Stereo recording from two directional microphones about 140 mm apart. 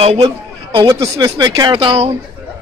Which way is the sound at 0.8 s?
25° right (ahead or behind).